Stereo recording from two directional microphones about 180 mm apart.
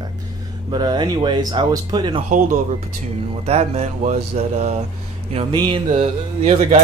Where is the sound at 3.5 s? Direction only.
35° right (ahead or behind).